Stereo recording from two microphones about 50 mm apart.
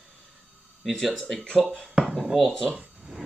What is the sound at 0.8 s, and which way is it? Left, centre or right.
Speech, centre.